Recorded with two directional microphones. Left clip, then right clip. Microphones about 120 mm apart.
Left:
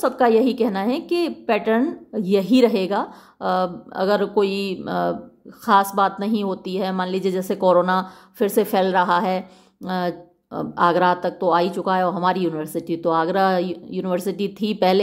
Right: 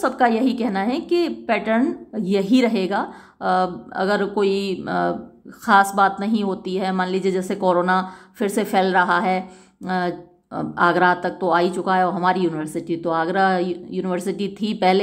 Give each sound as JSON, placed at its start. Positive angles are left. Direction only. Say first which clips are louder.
{"t": 0.0, "sound": "speech", "louder": "left 2 dB", "side_deg": 25}